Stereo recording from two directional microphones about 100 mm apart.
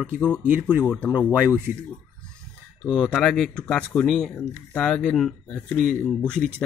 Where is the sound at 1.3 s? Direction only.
20° right (ahead or behind).